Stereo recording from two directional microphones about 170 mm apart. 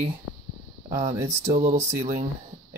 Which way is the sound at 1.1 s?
15° right (ahead or behind).